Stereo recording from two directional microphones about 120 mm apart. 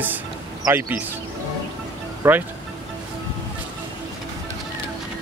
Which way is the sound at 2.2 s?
15° right (ahead or behind).